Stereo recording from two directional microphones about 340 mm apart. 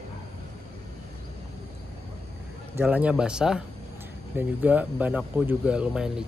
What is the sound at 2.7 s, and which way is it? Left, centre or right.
Speech, centre.